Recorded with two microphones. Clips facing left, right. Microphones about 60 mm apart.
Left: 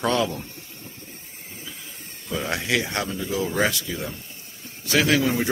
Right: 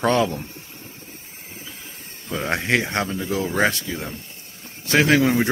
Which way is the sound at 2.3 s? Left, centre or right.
Right.